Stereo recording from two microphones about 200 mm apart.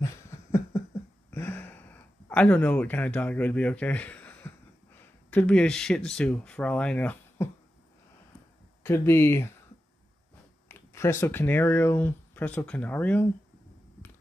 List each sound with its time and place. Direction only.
0.0 s a sound: 15° left (ahead or behind)
5.3 s speech: 5° left (ahead or behind)
8.8 s speech: 10° left (ahead or behind)
10.7 s speech: 10° left (ahead or behind)